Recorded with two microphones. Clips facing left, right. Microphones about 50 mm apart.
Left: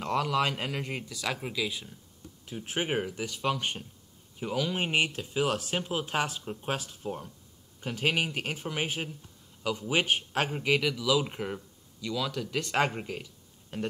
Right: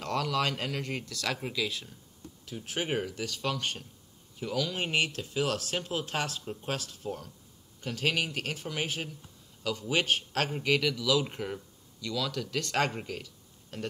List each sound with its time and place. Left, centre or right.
0.0 s speech: centre
2.4 s speech: left